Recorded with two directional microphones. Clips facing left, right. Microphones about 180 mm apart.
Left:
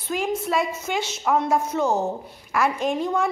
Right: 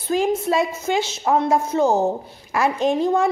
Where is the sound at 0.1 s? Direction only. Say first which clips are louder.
Right 5 dB; 35° right (ahead or behind).